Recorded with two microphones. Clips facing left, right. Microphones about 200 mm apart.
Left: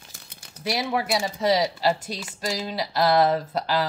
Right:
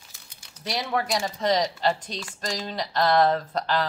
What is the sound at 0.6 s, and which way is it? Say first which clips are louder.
Speech: left 2 dB; 10° left (ahead or behind).